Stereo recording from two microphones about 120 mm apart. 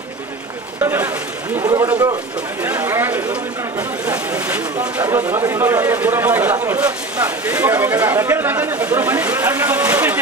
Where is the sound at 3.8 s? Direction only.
15° right (ahead or behind).